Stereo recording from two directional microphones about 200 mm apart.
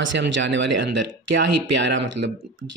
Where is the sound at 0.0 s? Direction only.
65° right (ahead or behind).